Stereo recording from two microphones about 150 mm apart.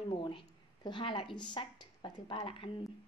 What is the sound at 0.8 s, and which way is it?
A woman's voice, 30° left (ahead or behind).